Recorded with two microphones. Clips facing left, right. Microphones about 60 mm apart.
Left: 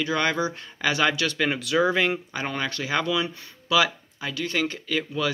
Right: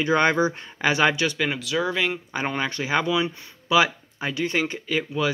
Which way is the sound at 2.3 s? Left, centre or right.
Centre.